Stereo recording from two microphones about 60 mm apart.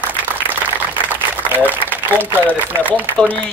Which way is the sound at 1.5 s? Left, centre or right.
Right.